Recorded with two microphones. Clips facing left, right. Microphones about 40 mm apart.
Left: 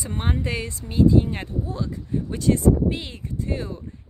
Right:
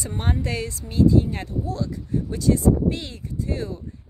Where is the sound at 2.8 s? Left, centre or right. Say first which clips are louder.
Right 1 dB; left.